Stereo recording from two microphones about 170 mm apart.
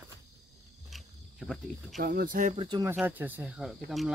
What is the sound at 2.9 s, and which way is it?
Speech, 10° right (ahead or behind).